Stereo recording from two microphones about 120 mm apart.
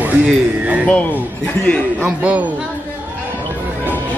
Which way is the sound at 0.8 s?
15° left (ahead or behind).